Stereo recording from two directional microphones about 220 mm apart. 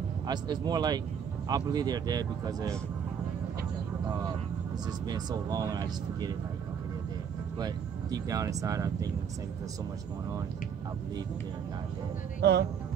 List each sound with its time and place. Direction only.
0.3 s speech: 20° right (ahead or behind)
5.0 s speech: 15° right (ahead or behind)
7.5 s speech: 15° right (ahead or behind)
12.4 s speech: 50° right (ahead or behind)